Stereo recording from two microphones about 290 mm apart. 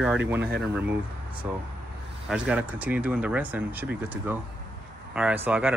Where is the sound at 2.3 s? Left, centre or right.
Centre.